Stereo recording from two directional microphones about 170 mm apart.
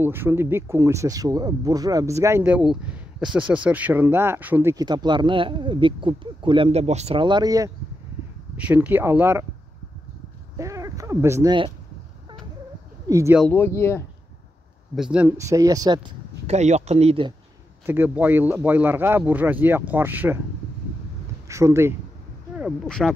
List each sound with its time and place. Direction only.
0.0 s speech: 15° right (ahead or behind)
4.8 s speech: 25° right (ahead or behind)
8.5 s speech: 10° right (ahead or behind)
10.6 s speech: 20° right (ahead or behind)
13.1 s speech: 15° right (ahead or behind)
13.5 s speech: 15° left (ahead or behind)
15.0 s speech: 5° right (ahead or behind)
15.2 s speech: 20° right (ahead or behind)
16.4 s speech: 40° right (ahead or behind)
17.8 s speech: 10° right (ahead or behind)
21.5 s speech: 15° right (ahead or behind)
22.6 s speech: centre (ahead or behind)